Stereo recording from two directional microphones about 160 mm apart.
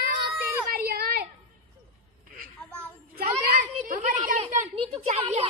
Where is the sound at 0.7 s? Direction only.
75° right (ahead or behind).